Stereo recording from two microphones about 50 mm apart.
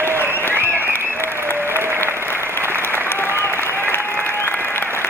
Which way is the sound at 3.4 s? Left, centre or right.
Left.